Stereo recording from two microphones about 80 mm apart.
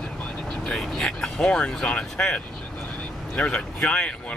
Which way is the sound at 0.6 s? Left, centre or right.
Centre.